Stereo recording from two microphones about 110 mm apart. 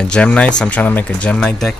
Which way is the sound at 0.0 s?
10° left (ahead or behind).